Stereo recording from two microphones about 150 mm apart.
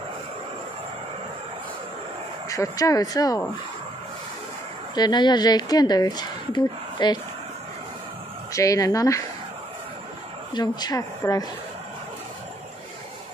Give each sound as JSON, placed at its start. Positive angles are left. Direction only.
{"t": 2.5, "sound": "a woman's voice", "side_deg": 25}
{"t": 4.9, "sound": "a woman's voice", "side_deg": 30}
{"t": 8.5, "sound": "a woman's voice", "side_deg": 20}
{"t": 10.5, "sound": "a woman's voice", "side_deg": 25}